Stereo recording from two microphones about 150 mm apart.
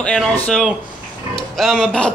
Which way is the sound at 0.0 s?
5° left (ahead or behind).